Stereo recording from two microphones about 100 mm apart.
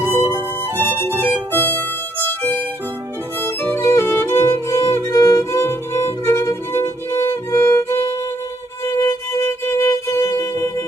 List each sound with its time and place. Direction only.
0.0 s violin: 20° right (ahead or behind)
0.8 s music: 20° left (ahead or behind)
4.5 s violin: 30° left (ahead or behind)
8.8 s music: 30° left (ahead or behind)